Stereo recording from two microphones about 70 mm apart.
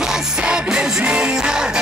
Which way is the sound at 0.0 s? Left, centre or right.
Centre.